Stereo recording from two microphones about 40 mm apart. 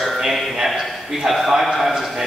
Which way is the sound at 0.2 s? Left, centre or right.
Centre.